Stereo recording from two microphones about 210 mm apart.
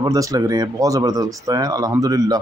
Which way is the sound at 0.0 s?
15° right (ahead or behind).